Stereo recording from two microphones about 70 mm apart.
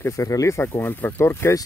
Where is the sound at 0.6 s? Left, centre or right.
Left.